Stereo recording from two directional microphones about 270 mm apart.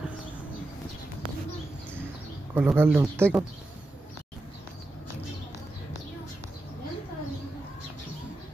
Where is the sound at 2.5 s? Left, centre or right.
Centre.